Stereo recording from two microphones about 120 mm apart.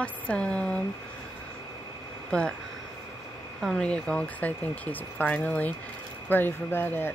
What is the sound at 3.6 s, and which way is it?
Speech, 5° left (ahead or behind).